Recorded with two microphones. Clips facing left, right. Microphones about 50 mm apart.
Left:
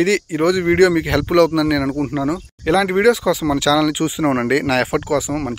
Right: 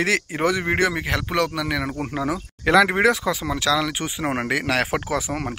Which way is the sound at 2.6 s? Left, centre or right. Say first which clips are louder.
Even; right.